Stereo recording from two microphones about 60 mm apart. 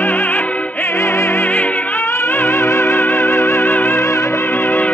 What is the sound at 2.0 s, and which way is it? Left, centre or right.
Music, left.